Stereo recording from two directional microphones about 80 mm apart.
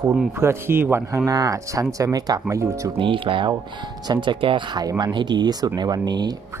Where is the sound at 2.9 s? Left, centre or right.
Right.